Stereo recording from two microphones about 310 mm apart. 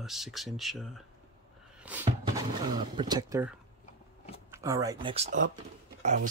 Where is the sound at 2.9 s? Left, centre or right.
Centre.